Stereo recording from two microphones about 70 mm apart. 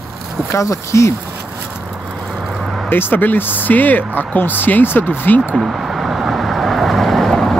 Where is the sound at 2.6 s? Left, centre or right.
Centre.